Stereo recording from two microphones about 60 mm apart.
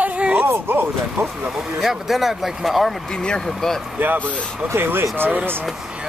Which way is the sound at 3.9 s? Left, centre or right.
Right.